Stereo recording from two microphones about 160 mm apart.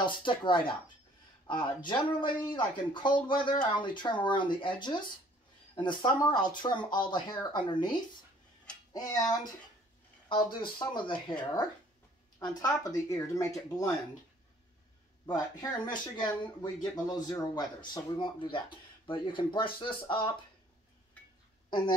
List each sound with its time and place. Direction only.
0.0 s speech: 30° left (ahead or behind)
15.2 s speech: 25° left (ahead or behind)
21.6 s speech: 30° left (ahead or behind)